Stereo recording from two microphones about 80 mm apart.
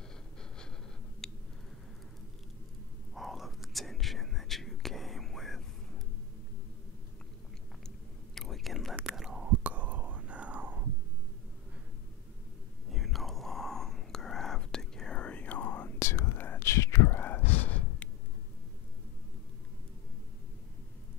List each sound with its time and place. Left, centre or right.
1.2 s a sound: centre
3.2 s whispering: centre
8.4 s whispering: centre
12.9 s whispering: centre